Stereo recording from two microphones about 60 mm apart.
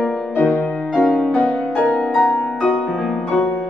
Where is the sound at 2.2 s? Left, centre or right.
Centre.